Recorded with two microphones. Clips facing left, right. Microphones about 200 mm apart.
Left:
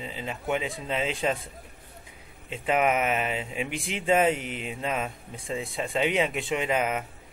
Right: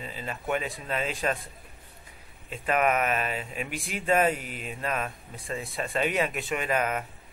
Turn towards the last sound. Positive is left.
turn(degrees=15)  # may be behind; listen again after turning